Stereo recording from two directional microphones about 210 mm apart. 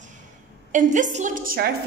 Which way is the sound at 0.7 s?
35° right (ahead or behind).